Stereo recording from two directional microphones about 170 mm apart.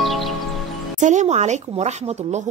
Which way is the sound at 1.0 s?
45° right (ahead or behind).